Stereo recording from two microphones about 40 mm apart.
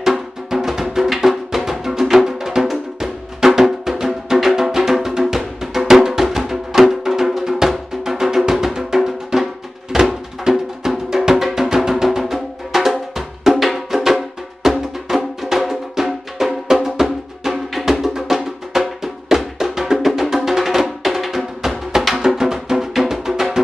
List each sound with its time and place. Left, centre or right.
0.0 s music: centre